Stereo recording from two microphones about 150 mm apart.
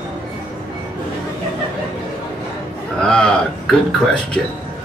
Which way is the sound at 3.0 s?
5° left (ahead or behind).